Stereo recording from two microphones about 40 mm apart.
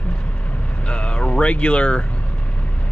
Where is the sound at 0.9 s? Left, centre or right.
Left.